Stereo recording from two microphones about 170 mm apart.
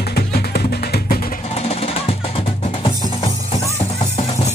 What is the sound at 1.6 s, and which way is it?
Music, 35° left (ahead or behind).